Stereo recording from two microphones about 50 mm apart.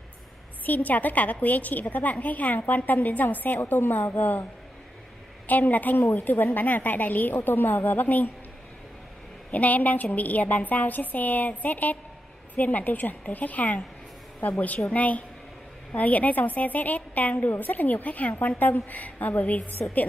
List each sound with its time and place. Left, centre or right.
0.7 s a woman's voice: left
5.5 s a woman's voice: left
9.5 s a woman's voice: left